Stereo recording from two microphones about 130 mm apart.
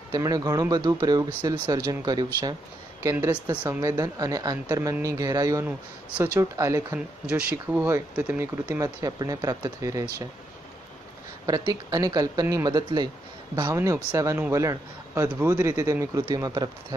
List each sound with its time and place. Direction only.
0.1 s speech: 30° right (ahead or behind)
5.7 s speech: 10° right (ahead or behind)
11.4 s speech: 30° right (ahead or behind)